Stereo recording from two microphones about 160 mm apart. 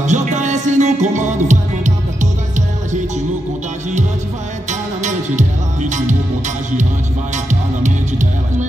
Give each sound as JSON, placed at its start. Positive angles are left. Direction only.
{"t": 0.0, "sound": "music", "side_deg": -50}
{"t": 4.6, "sound": "music", "side_deg": -50}
{"t": 7.8, "sound": "music", "side_deg": -50}